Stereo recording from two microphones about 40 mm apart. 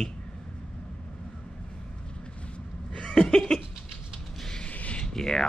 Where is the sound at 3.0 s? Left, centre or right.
Left.